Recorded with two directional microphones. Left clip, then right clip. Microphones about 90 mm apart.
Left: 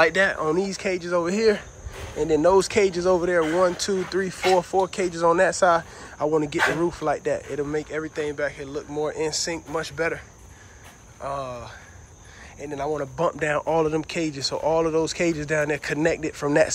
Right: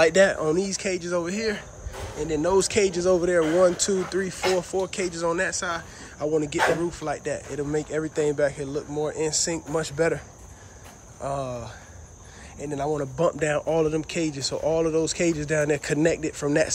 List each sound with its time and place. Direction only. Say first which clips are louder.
0.1 s speech: right 2 dB; 45° right (ahead or behind)
0.4 s speech: left 1 dB; 25° right (ahead or behind)
1.2 s speech: left 7 dB; 15° right (ahead or behind); by 4.2 s 35° right (ahead or behind)
4.2 s speech: left 4 dB; 20° right (ahead or behind)
5.5 s speech: left 10 dB; 5° right (ahead or behind)
6.1 s speech: left 2 dB; 15° right (ahead or behind)
7.6 s speech: right 1 dB; 45° right (ahead or behind)
8.9 s speech: left 1 dB; 40° right (ahead or behind); by 11.7 s 55° right (ahead or behind)
12.5 s speech: even; 45° right (ahead or behind)
13.4 s speech: left 1 dB; 30° right (ahead or behind)